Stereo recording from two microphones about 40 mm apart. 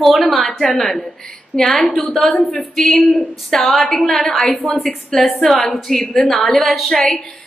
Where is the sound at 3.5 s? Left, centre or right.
Centre.